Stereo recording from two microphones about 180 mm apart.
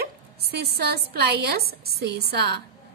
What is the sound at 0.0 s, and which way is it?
A woman's voice, 60° right (ahead or behind).